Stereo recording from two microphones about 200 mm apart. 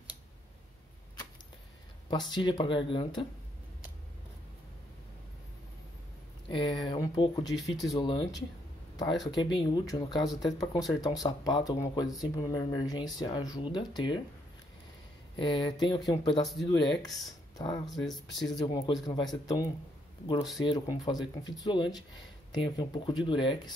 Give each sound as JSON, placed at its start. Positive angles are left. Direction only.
{"t": 2.0, "sound": "speech", "side_deg": 20}
{"t": 6.5, "sound": "speech", "side_deg": 20}
{"t": 15.3, "sound": "speech", "side_deg": 25}
{"t": 18.1, "sound": "speech", "side_deg": 0}
{"t": 18.5, "sound": "speech", "side_deg": 20}